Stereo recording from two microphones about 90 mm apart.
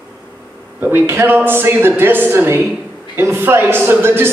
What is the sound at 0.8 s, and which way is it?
Speech, 20° right (ahead or behind).